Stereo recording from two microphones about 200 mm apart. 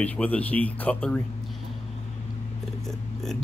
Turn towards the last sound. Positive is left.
turn(degrees=0)  # may be behind; listen again after turning